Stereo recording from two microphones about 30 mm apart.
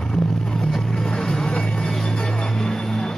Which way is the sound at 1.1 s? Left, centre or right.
Left.